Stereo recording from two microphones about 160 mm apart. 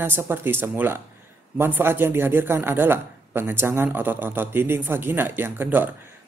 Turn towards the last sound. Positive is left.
turn(degrees=-10)  # may be behind; listen again after turning